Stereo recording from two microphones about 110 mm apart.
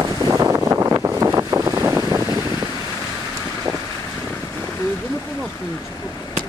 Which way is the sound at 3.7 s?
35° right (ahead or behind).